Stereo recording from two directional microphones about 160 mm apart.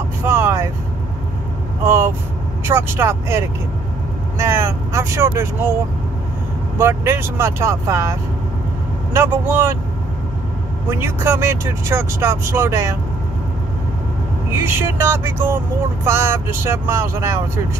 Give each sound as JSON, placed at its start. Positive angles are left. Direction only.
{"t": 0.2, "sound": "vehicle", "side_deg": -15}
{"t": 1.9, "sound": "speech", "side_deg": -15}
{"t": 6.8, "sound": "speech", "side_deg": -15}
{"t": 10.9, "sound": "speech", "side_deg": -15}
{"t": 14.5, "sound": "speech", "side_deg": -15}